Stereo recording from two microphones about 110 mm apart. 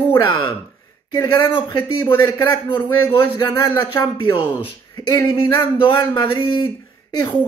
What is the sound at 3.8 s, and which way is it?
Speech, 50° left (ahead or behind).